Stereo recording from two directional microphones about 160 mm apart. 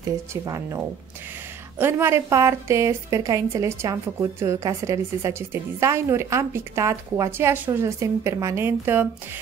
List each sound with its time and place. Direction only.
0.3 s a woman's voice: 20° right (ahead or behind)